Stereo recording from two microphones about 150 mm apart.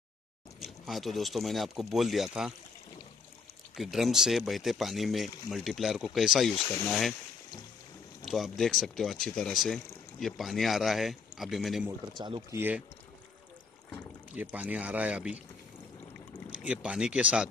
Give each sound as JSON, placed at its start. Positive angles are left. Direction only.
{"t": 0.6, "sound": "speech", "side_deg": 0}
{"t": 3.7, "sound": "speech", "side_deg": 0}
{"t": 8.3, "sound": "speech", "side_deg": 0}
{"t": 12.1, "sound": "speech", "side_deg": -30}
{"t": 12.5, "sound": "speech", "side_deg": -10}
{"t": 14.3, "sound": "speech", "side_deg": -10}
{"t": 16.4, "sound": "speech", "side_deg": -5}